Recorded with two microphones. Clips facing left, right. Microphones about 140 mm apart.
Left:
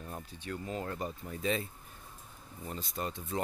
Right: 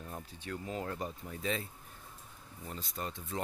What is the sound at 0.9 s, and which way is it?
Speech, 5° left (ahead or behind).